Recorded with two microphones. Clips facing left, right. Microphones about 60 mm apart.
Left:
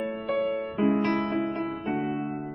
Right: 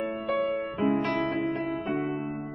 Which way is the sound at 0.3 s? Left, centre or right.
Centre.